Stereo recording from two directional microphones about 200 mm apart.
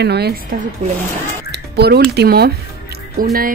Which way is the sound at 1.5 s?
55° right (ahead or behind).